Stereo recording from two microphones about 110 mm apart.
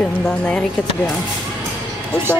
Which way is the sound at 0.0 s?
10° left (ahead or behind).